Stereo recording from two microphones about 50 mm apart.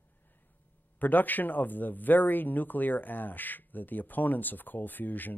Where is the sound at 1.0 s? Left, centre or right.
Left.